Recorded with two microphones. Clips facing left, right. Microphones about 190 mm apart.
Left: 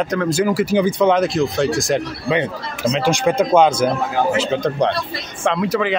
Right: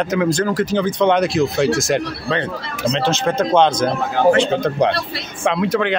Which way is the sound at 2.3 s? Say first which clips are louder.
Left 4 dB; 10° left (ahead or behind).